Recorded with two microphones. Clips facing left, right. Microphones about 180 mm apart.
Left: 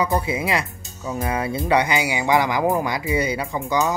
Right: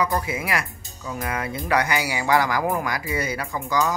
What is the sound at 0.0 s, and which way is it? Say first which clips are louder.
Speech: left 3 dB; 25° left (ahead or behind).